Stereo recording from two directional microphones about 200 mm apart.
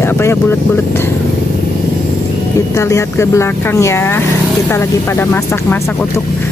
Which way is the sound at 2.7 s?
15° left (ahead or behind).